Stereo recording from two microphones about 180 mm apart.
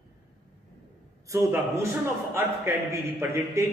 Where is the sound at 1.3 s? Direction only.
15° right (ahead or behind).